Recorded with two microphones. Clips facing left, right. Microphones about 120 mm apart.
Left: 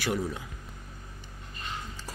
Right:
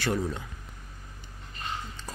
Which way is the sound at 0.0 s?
10° left (ahead or behind).